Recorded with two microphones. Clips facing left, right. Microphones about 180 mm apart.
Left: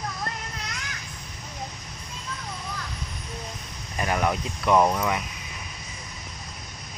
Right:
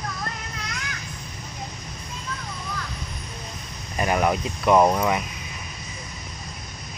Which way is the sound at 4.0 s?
15° right (ahead or behind).